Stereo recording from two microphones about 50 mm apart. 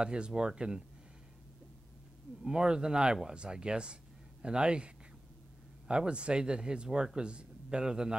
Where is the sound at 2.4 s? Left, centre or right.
Centre.